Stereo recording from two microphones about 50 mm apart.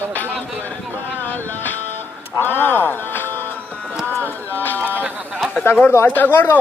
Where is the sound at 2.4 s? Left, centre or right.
Left.